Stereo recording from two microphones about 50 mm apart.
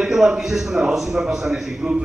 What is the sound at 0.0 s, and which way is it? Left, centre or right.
A man's voice, centre.